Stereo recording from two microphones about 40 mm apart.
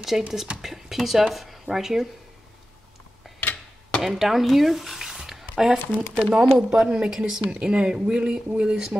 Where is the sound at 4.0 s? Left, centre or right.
Centre; by 8.7 s right.